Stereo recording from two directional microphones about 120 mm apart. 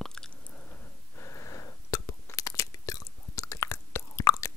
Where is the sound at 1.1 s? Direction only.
25° left (ahead or behind).